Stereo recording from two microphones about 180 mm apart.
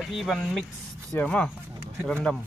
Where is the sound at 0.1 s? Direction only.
Centre (ahead or behind).